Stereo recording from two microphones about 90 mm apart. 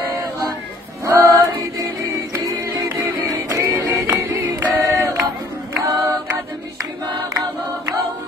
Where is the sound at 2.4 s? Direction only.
35° right (ahead or behind).